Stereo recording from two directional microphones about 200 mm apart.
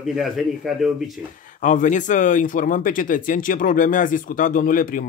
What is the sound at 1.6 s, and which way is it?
Speech, 40° left (ahead or behind).